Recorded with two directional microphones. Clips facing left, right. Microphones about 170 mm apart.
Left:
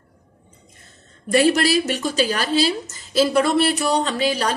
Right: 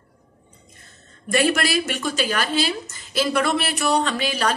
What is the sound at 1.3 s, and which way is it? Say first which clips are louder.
A woman's voice: left 4 dB; 35° left (ahead or behind).